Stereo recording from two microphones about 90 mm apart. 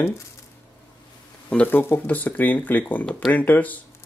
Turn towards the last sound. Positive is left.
turn(degrees=20)  # may be behind; listen again after turning